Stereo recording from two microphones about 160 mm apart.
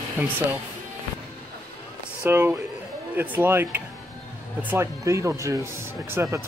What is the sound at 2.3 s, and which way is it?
Speech, 15° right (ahead or behind).